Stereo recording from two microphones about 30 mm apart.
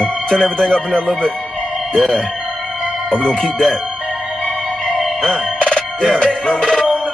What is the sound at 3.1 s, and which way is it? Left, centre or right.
Speech, left.